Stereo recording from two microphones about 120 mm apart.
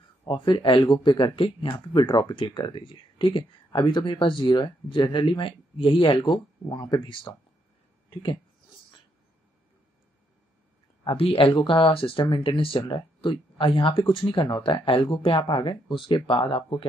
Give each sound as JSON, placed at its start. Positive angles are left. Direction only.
{"t": 0.3, "sound": "speech", "side_deg": 45}
{"t": 8.1, "sound": "a sound", "side_deg": 40}
{"t": 11.1, "sound": "speech", "side_deg": 50}